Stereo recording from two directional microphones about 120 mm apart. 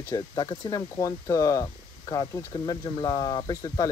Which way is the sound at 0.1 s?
35° left (ahead or behind).